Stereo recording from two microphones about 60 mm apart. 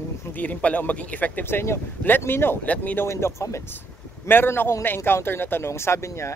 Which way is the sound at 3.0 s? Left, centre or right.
Left.